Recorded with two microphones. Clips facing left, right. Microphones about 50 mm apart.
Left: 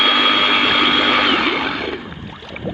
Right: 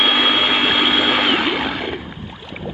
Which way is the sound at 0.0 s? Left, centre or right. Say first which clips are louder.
Left 1 dB; centre.